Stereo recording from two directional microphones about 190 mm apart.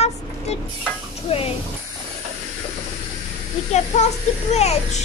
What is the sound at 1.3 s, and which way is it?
Speech, 30° left (ahead or behind).